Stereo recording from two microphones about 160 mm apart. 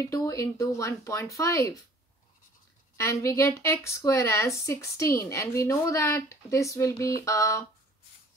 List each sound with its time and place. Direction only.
0.0 s a woman's voice: 20° left (ahead or behind)
3.0 s a woman's voice: 20° left (ahead or behind)